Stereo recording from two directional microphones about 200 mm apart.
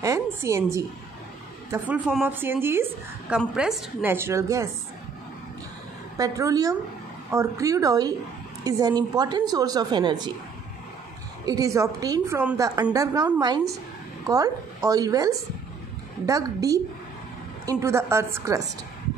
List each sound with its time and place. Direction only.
0.0 s a sound: 15° right (ahead or behind)
1.7 s a woman's voice: 5° right (ahead or behind)
6.1 s a woman's voice: 15° right (ahead or behind)
11.4 s a woman's voice: 15° right (ahead or behind)